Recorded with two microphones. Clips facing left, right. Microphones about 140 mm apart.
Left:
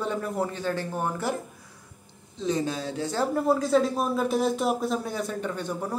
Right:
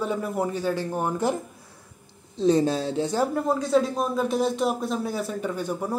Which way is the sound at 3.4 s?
5° left (ahead or behind).